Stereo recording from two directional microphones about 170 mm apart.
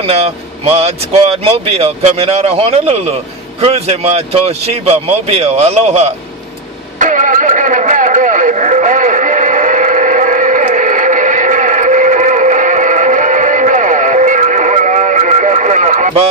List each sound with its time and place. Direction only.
0.0 s speech: 35° right (ahead or behind)
7.0 s vehicle: 50° right (ahead or behind)